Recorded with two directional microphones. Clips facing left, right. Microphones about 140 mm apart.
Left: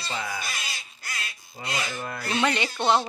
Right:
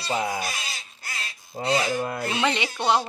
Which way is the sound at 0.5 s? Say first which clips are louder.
Right 1 dB; 25° right (ahead or behind).